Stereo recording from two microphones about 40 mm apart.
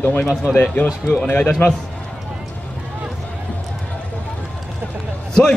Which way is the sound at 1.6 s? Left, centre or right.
Left.